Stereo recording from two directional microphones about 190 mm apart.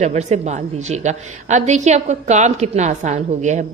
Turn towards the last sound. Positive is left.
turn(degrees=-40)  # may be behind; listen again after turning